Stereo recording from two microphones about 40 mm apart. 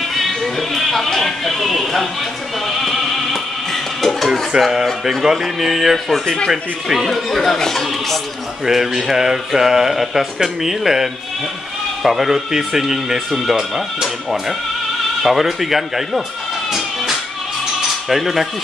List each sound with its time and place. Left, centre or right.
0.1 s music: centre
4.5 s speech: centre
5.2 s speech: centre
6.5 s speech: centre
7.1 s speech: centre
8.6 s speech: centre
15.2 s speech: centre
16.7 s music: centre
18.0 s speech: centre